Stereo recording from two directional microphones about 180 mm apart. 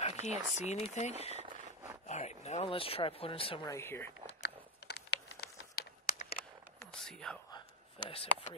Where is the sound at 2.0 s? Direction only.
40° left (ahead or behind).